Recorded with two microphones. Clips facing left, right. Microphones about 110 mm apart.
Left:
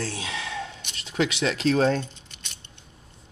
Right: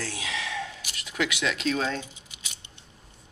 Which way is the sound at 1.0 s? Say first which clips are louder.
Left 4 dB; 30° left (ahead or behind).